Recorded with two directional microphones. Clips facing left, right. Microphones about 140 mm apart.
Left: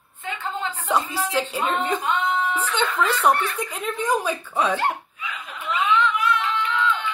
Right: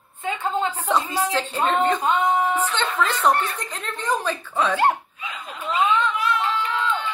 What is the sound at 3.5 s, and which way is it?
A woman's voice, 10° left (ahead or behind).